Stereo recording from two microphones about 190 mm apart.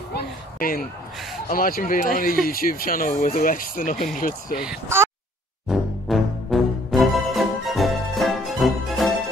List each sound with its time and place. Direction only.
0.1 s a sound: 50° left (ahead or behind)
1.5 s speech: 50° left (ahead or behind)
4.6 s speech: 10° right (ahead or behind)
5.7 s music: centre (ahead or behind)